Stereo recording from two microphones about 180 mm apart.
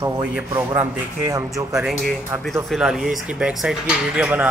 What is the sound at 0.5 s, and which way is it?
Speech, 15° right (ahead or behind).